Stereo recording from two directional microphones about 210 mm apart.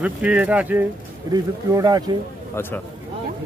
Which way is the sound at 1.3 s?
20° right (ahead or behind).